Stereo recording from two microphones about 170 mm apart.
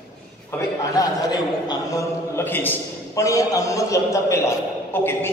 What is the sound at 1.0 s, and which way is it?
A man's voice, 20° left (ahead or behind).